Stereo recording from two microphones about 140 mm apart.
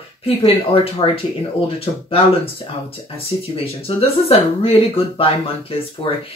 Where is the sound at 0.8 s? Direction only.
45° left (ahead or behind).